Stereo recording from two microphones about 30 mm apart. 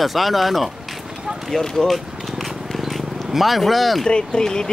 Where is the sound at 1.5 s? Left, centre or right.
Centre.